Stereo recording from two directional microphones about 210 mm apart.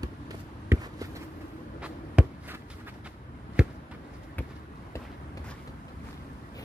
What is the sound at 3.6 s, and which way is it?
Basketball bounce, 5° right (ahead or behind).